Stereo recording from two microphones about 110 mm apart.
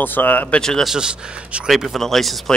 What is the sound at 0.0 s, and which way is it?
Speech, 15° left (ahead or behind).